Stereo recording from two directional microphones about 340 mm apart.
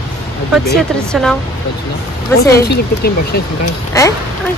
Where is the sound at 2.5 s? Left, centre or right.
Left.